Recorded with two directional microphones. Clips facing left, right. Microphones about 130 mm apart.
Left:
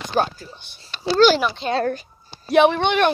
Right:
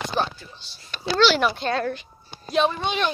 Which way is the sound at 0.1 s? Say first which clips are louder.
Left 9 dB; 45° left (ahead or behind).